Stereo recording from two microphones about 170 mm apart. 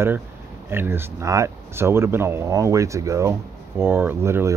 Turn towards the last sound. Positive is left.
turn(degrees=-15)  # may be behind; listen again after turning